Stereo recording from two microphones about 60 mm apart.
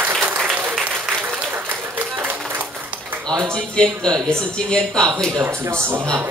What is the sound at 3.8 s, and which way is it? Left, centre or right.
Speech, centre.